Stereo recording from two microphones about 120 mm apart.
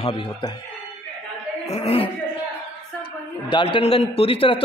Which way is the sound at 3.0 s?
40° left (ahead or behind).